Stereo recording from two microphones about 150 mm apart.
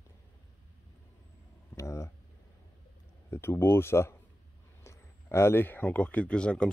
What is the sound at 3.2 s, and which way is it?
Speech, 15° left (ahead or behind).